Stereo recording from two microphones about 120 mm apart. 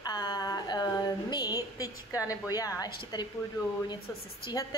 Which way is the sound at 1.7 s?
30° left (ahead or behind).